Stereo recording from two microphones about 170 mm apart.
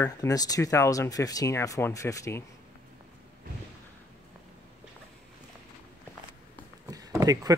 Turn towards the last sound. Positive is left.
turn(degrees=-20)  # may be behind; listen again after turning